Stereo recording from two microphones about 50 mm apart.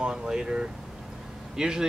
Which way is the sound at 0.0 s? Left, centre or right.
Centre.